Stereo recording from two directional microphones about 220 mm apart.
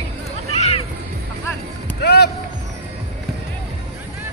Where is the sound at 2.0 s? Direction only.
50° left (ahead or behind).